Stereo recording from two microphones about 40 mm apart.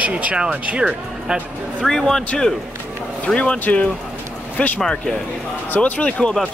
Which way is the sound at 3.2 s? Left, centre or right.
Left.